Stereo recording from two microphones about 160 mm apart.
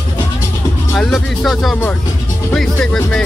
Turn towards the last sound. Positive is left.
turn(degrees=5)  # may be behind; listen again after turning